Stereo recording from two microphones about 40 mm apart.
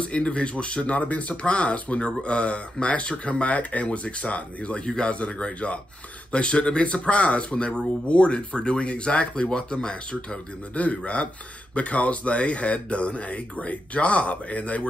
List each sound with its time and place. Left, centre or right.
0.0 s speech: left
10.7 s speech: left